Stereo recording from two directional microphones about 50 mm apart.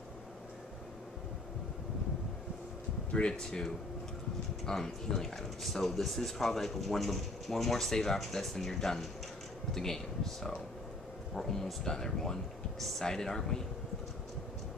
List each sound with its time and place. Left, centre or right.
3.1 s speech: left
3.3 s speech: centre